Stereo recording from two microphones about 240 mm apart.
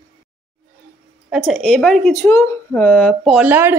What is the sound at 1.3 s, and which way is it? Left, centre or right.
Speech, centre.